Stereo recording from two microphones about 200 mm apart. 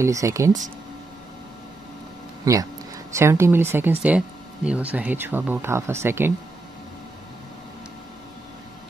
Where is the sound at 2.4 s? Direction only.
15° right (ahead or behind).